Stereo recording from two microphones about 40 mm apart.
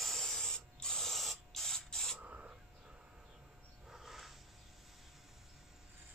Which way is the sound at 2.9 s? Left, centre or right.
Right.